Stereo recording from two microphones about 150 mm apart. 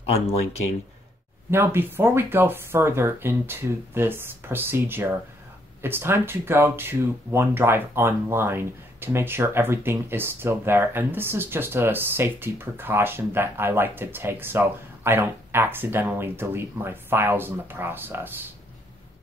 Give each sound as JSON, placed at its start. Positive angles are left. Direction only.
{"t": 0.1, "sound": "speech", "side_deg": 45}
{"t": 1.5, "sound": "speech", "side_deg": -15}